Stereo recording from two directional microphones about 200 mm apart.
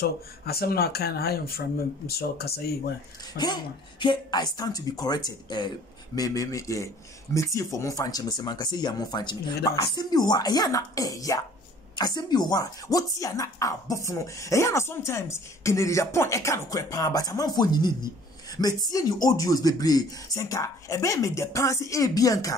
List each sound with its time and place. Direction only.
0.0 s speech: 50° left (ahead or behind)
3.3 s speech: 20° left (ahead or behind)